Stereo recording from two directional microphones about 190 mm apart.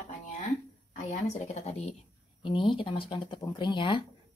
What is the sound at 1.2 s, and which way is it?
Speech, 35° left (ahead or behind).